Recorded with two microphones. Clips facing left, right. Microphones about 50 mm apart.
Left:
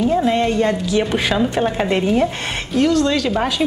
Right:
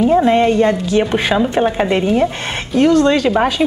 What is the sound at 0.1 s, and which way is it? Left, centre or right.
Speech, centre.